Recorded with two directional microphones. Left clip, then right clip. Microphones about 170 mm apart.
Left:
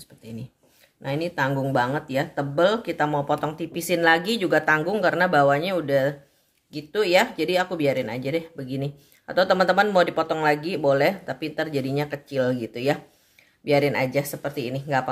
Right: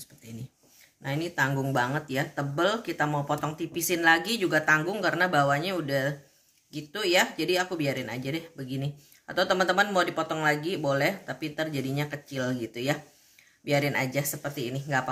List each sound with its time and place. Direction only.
1.0 s speech: 40° left (ahead or behind)